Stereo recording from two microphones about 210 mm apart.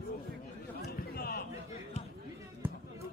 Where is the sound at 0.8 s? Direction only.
45° left (ahead or behind).